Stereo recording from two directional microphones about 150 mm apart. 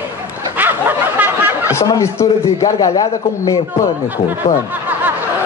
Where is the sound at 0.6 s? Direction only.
10° right (ahead or behind).